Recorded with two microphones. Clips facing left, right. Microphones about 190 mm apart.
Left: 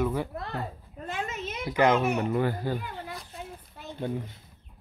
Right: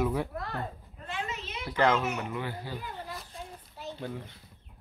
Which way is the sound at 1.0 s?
45° left (ahead or behind).